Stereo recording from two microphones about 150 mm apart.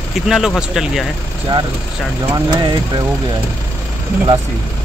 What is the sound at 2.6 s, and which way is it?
Speech, 30° right (ahead or behind).